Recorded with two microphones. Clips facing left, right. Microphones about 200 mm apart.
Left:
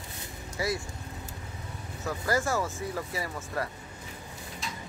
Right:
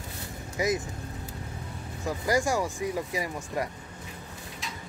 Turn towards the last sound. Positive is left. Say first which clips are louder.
# right 3 dB
turn(degrees=-15)  # may be behind; listen again after turning